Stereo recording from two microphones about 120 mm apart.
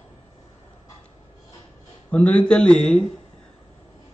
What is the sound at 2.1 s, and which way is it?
Speech, 10° left (ahead or behind).